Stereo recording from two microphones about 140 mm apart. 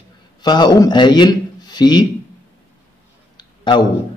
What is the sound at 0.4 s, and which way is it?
A man's voice, 30° left (ahead or behind).